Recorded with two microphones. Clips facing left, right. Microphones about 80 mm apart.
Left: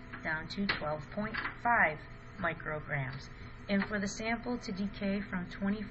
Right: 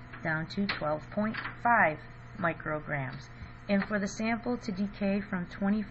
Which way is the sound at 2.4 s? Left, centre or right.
Right.